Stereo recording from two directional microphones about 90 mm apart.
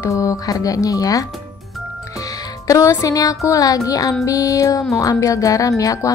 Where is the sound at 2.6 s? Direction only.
35° left (ahead or behind).